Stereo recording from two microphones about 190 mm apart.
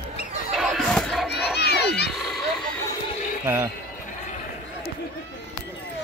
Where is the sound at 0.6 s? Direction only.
Centre (ahead or behind).